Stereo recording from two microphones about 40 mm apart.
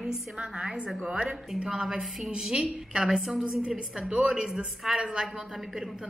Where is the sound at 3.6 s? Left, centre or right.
Right.